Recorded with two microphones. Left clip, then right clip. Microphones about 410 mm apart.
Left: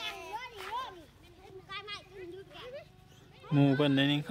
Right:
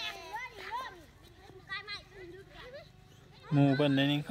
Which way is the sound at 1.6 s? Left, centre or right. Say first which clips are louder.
Right 1 dB; left.